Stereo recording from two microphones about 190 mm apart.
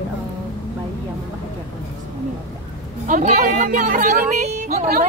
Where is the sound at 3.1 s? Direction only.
40° right (ahead or behind).